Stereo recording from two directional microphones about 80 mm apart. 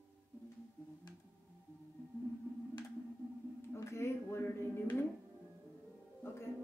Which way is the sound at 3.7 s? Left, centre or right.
Left.